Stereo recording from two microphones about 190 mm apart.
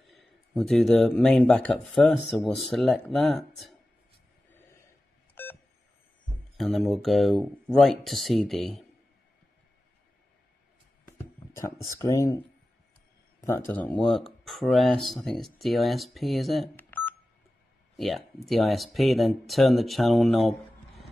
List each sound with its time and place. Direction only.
0.0 s speech: centre (ahead or behind)
5.3 s beep: 10° left (ahead or behind)
6.5 s speech: centre (ahead or behind)
11.8 s speech: 20° left (ahead or behind)
13.4 s speech: 10° left (ahead or behind)
16.7 s telephone dialing: 10° left (ahead or behind)
17.9 s speech: centre (ahead or behind)